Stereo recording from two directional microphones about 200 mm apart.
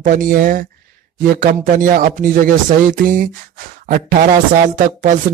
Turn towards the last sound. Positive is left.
turn(degrees=-40)  # may be behind; listen again after turning